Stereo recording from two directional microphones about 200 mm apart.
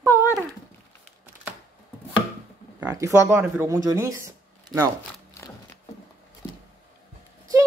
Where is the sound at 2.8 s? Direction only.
15° right (ahead or behind).